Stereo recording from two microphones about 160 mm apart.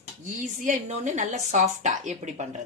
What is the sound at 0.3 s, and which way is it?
A woman's voice, 50° right (ahead or behind).